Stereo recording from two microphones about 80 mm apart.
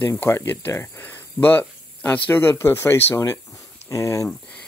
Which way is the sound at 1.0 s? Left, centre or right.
Left.